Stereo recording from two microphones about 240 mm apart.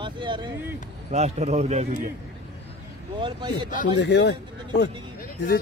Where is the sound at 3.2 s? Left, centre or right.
Centre.